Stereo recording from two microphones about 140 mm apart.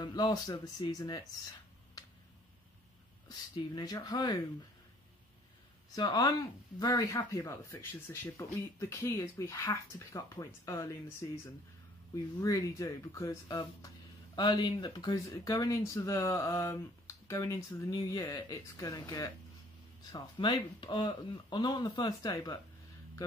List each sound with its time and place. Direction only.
0.0 s speech: 30° left (ahead or behind)
3.3 s speech: 30° left (ahead or behind)
5.9 s speech: 30° left (ahead or behind)